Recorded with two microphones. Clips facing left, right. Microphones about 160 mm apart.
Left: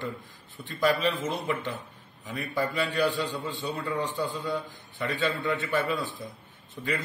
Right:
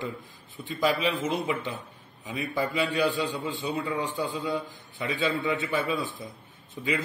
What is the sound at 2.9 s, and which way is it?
A man's voice, centre (ahead or behind).